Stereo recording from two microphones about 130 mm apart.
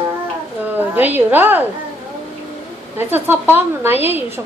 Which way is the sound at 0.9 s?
15° right (ahead or behind).